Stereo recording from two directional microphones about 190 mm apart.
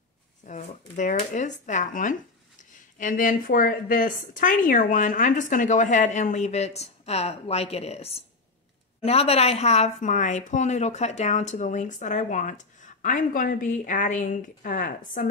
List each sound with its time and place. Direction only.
0.5 s speech: 40° left (ahead or behind)